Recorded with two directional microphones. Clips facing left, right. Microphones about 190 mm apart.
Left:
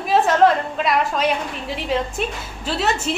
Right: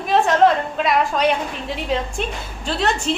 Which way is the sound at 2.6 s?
5° left (ahead or behind).